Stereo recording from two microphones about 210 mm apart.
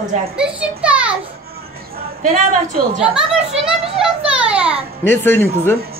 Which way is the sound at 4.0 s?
5° right (ahead or behind).